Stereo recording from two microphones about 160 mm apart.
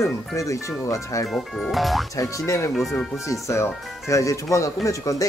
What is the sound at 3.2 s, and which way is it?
Speech, 20° left (ahead or behind).